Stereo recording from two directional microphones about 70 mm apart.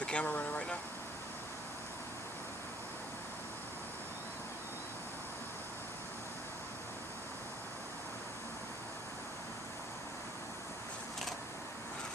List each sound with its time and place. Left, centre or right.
0.0 s vehicle: centre